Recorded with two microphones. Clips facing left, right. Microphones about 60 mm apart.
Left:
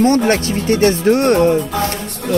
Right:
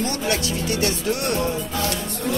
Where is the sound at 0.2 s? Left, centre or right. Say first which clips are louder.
Left 8 dB; left.